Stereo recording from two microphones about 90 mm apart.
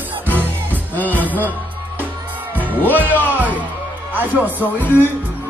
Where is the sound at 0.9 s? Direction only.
20° left (ahead or behind).